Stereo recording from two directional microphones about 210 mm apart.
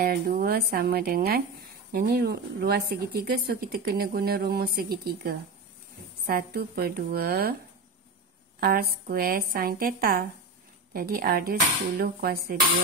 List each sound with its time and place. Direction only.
0.1 s a woman's voice: 45° right (ahead or behind)
8.5 s a woman's voice: 45° right (ahead or behind)